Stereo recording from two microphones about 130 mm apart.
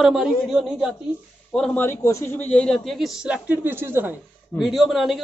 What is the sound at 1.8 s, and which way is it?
Speech, 20° left (ahead or behind).